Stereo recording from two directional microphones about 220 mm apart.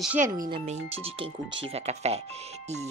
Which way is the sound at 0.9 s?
25° right (ahead or behind).